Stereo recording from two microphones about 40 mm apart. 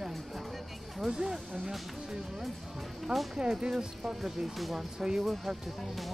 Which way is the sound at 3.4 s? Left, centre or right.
Right.